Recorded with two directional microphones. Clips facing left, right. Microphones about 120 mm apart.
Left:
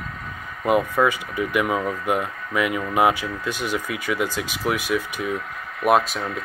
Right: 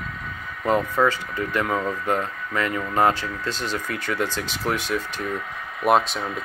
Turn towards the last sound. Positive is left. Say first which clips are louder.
# left 1 dB
turn(degrees=0)  # may be behind; listen again after turning